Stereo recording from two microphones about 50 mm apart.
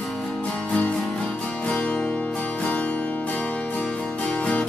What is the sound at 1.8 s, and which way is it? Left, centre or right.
Music, left.